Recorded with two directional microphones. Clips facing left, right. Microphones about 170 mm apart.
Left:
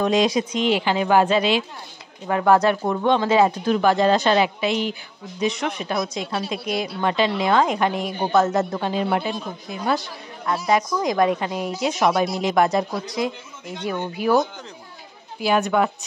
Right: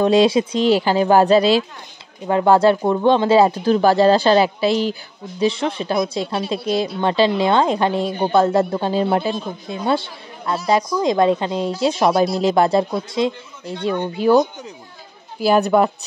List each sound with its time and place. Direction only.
0.0 s speech: 30° right (ahead or behind)
15.4 s speech: 35° right (ahead or behind)